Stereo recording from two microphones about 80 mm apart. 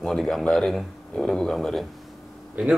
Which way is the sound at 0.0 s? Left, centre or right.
Centre.